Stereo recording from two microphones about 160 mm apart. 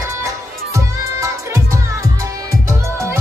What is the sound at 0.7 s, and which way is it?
Music, 20° right (ahead or behind).